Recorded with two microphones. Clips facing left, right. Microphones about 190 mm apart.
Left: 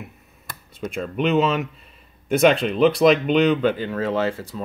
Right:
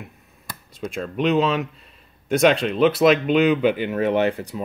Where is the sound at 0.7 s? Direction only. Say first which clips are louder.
Even; centre (ahead or behind).